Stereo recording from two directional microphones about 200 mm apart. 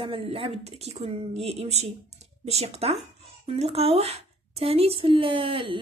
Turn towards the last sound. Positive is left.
turn(degrees=-25)  # may be behind; listen again after turning